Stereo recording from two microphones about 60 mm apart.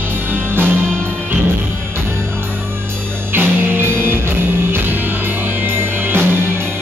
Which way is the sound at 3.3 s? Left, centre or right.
Right.